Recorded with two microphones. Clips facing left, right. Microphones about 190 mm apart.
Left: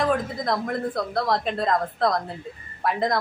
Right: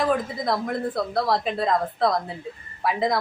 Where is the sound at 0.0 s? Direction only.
Centre (ahead or behind).